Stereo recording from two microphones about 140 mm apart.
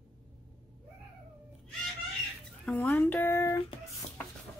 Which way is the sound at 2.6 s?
10° left (ahead or behind).